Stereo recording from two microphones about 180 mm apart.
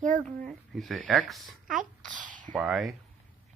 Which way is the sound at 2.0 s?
45° right (ahead or behind).